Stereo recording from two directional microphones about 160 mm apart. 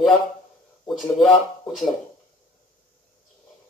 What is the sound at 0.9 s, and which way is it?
A man's voice, centre (ahead or behind).